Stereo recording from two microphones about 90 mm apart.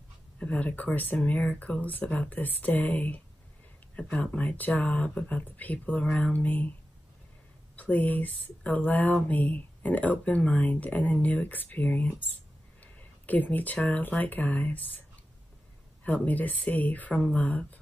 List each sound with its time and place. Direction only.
0.4 s speech: 15° left (ahead or behind)
7.7 s speech: 20° left (ahead or behind)